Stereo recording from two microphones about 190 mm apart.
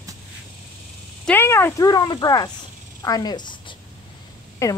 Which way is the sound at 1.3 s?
10° left (ahead or behind).